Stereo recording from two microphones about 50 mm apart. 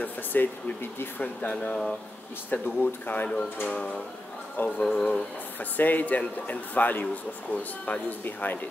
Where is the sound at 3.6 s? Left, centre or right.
Left.